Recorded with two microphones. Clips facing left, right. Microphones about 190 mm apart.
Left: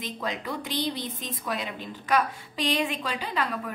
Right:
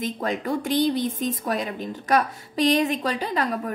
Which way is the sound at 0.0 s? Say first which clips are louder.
Right 6 dB; 50° right (ahead or behind).